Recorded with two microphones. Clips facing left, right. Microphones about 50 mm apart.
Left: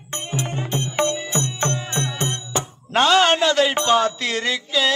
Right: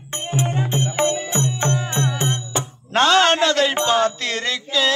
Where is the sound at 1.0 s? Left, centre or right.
Centre.